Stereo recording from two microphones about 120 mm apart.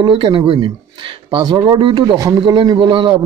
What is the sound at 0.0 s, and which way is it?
Speech, 45° right (ahead or behind).